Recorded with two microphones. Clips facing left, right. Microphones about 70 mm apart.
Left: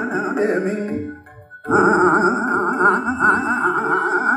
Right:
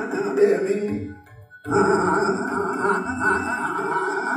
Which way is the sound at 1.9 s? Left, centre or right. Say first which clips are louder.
Left 5 dB; left.